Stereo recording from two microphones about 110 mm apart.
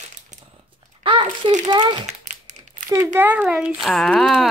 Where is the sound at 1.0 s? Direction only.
45° right (ahead or behind).